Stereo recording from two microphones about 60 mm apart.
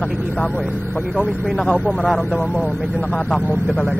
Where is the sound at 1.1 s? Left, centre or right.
Centre.